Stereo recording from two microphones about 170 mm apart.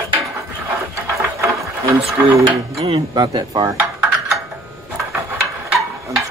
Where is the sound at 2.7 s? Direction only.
35° right (ahead or behind).